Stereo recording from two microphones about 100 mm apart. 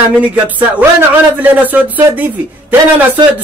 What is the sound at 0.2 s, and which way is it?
Speech, 15° right (ahead or behind).